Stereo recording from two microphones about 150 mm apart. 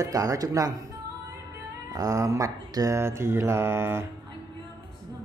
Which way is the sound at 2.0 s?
20° right (ahead or behind).